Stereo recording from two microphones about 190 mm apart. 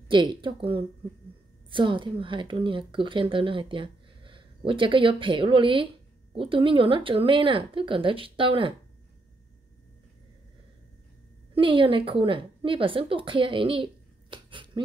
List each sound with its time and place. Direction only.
0.1 s a woman's voice: 25° right (ahead or behind)
11.5 s a woman's voice: 25° right (ahead or behind)
14.3 s a sound: 25° right (ahead or behind)